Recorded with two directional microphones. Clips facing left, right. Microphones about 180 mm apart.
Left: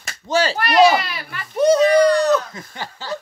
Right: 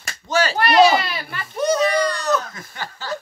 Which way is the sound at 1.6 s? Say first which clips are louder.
Left 6 dB; 30° left (ahead or behind).